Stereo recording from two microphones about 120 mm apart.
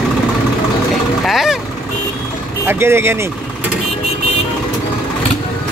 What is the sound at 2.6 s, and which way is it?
Speech, 20° right (ahead or behind).